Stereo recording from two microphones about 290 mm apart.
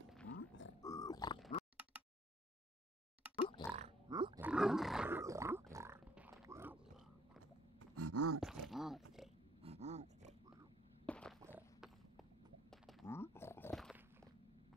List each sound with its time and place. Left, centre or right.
0.4 s grunt: left
0.8 s grunt: centre
3.3 s pig: centre
3.7 s music: centre
4.5 s roar: centre
7.9 s a sound: right
8.4 s a sound: centre
9.6 s dog: right
11.1 s a sound: centre
13.0 s grunt: centre